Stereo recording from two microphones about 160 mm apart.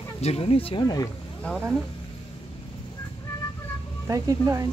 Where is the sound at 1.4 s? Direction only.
Centre (ahead or behind).